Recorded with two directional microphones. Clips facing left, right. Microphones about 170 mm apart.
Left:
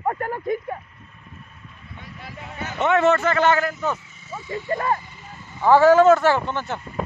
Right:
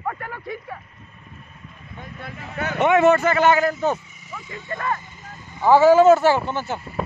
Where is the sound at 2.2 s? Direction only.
60° right (ahead or behind).